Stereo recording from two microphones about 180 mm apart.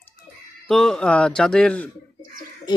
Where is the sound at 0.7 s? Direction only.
5° left (ahead or behind).